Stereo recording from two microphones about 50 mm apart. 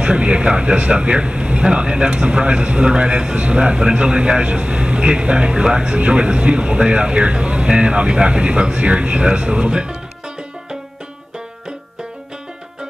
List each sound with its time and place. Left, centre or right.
0.0 s speech: right